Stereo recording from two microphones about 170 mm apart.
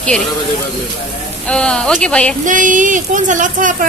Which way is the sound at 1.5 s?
5° left (ahead or behind).